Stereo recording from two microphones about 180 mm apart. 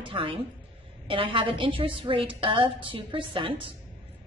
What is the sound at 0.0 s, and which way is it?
A woman's voice, 30° right (ahead or behind).